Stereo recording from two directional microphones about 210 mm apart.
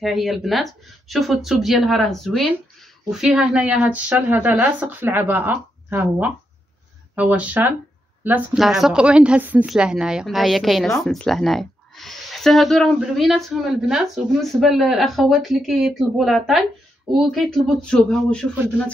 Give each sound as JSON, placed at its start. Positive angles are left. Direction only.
{"t": 0.0, "sound": "a woman's voice", "side_deg": 0}